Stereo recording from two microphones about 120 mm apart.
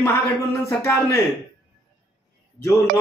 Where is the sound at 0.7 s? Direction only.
25° left (ahead or behind).